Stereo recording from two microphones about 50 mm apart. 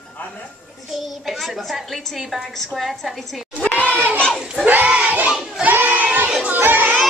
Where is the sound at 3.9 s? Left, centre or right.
Right.